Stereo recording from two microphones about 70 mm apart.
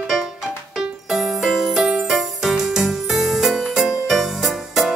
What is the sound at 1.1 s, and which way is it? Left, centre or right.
Music, centre.